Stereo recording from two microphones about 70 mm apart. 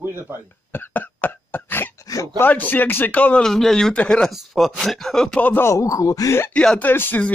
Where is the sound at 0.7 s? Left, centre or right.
Left.